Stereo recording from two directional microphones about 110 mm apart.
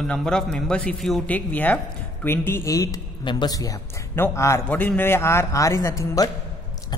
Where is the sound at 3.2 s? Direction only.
40° left (ahead or behind).